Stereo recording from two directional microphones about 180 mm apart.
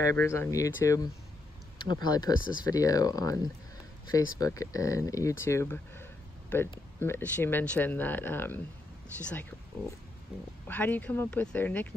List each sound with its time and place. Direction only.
0.0 s speech: 15° left (ahead or behind)